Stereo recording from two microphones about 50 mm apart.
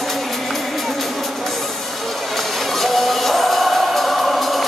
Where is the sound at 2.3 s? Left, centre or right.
Centre.